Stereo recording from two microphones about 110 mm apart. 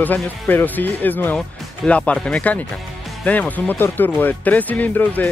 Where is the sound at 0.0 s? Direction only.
15° left (ahead or behind).